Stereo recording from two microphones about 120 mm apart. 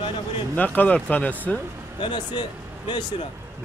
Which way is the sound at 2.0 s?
40° left (ahead or behind).